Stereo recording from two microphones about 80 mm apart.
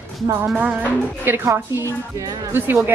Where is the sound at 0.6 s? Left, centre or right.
Centre.